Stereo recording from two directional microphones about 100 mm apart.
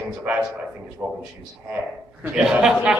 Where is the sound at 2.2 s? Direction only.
10° right (ahead or behind).